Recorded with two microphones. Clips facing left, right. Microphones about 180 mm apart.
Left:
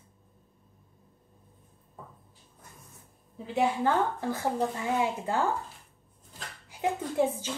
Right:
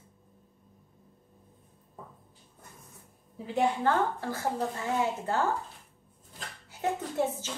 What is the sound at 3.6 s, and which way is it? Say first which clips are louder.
A woman's voice: even; 15° left (ahead or behind).